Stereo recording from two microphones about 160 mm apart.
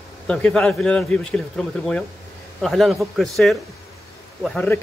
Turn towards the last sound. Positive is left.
turn(degrees=10)  # may be behind; listen again after turning